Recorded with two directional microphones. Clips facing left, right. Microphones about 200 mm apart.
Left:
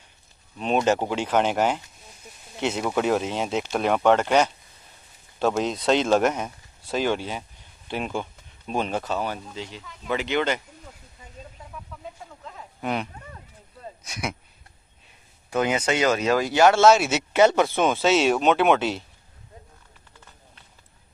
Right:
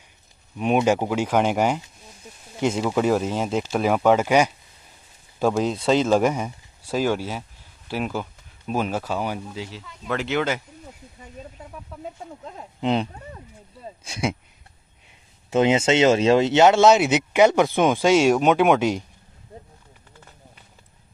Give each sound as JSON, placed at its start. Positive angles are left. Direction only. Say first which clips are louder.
{"t": 0.6, "sound": "speech", "louder": "right 2 dB", "side_deg": -10}
{"t": 5.9, "sound": "speech", "louder": "right 1 dB", "side_deg": -5}
{"t": 12.8, "sound": "speech", "louder": "right 5 dB", "side_deg": -25}
{"t": 15.5, "sound": "speech", "louder": "right 5 dB", "side_deg": -25}